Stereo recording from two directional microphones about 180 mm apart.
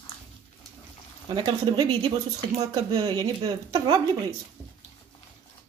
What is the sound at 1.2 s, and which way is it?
Speech, 25° right (ahead or behind).